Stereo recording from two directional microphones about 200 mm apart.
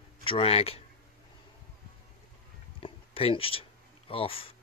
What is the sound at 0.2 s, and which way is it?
Speech, 30° left (ahead or behind).